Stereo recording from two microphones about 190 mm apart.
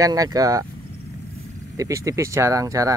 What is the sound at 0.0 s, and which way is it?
Speech, 20° right (ahead or behind).